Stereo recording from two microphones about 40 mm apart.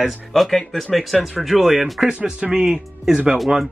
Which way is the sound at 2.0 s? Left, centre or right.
Right.